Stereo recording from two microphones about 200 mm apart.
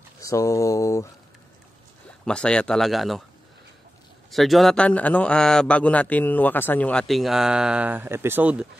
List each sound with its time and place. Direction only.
0.2 s speech: 15° left (ahead or behind)
2.2 s a man's voice: 5° left (ahead or behind)
4.3 s a man's voice: centre (ahead or behind)